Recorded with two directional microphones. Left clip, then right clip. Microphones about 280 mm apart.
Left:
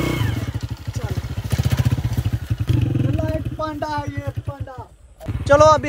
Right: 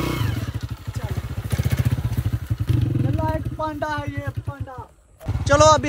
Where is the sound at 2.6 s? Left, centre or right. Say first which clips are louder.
Left 2 dB; centre.